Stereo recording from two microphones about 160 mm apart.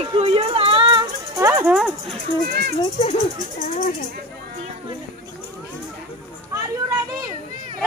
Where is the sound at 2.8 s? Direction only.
40° left (ahead or behind).